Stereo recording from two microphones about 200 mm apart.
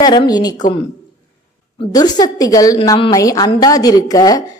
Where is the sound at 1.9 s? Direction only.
20° left (ahead or behind).